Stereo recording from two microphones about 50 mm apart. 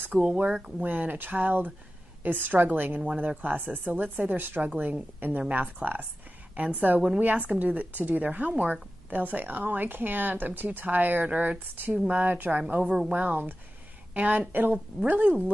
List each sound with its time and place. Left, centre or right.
0.1 s speech: centre
0.8 s speech: right
3.0 s speech: right
5.8 s a woman's voice: centre
6.5 s a woman's voice: right
13.1 s a woman's voice: right